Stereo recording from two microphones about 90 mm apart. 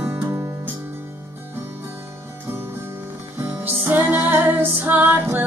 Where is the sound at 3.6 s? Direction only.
20° right (ahead or behind).